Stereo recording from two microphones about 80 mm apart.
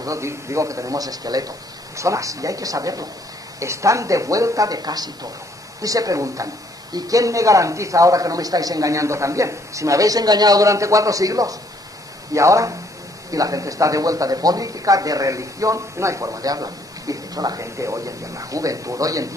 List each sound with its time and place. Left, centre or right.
0.0 s a man's voice: right